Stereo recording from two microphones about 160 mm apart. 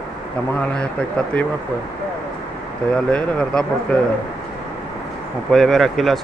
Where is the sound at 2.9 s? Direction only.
5° left (ahead or behind).